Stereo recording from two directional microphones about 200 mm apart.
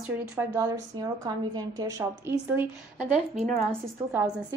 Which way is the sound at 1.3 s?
20° right (ahead or behind).